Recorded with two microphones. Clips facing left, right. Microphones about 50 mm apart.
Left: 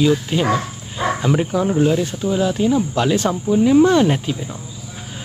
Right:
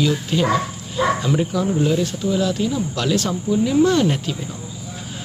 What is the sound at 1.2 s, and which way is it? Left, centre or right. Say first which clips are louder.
Speech: left 2 dB; left.